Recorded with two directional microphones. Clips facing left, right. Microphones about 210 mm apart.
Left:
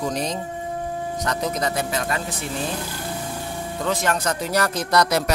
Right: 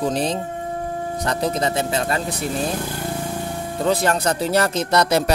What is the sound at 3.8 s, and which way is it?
Speech, 35° right (ahead or behind).